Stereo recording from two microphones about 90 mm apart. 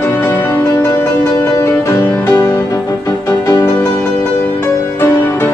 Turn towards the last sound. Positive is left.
turn(degrees=25)  # may be behind; listen again after turning